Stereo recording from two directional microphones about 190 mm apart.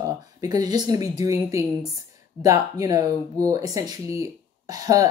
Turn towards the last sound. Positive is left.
turn(degrees=-20)  # may be behind; listen again after turning